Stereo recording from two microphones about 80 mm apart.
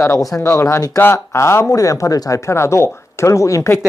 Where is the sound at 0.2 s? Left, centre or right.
Left.